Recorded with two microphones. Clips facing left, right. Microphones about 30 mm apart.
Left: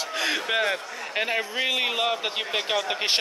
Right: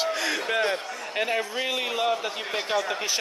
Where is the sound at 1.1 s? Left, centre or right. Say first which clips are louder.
Left 1 dB; centre.